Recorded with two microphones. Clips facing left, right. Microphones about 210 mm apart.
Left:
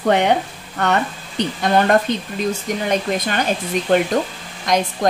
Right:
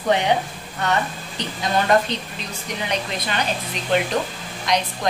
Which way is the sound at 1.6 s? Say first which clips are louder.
Left 3 dB; 55° left (ahead or behind).